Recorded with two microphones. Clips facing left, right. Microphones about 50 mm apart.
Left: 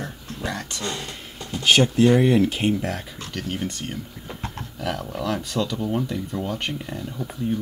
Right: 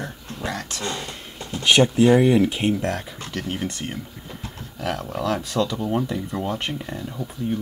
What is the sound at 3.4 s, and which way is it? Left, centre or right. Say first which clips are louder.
Speech: right 1 dB; right.